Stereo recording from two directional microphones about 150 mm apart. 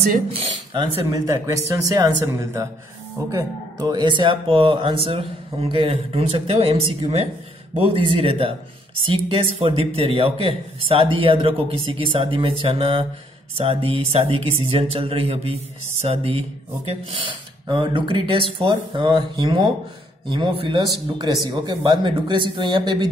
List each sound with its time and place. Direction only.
1.1 s a man's voice: 20° right (ahead or behind); by 16.4 s 40° right (ahead or behind)
17.6 s a man's voice: 30° right (ahead or behind)